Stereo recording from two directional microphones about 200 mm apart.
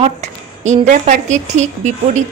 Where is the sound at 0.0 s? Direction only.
35° right (ahead or behind).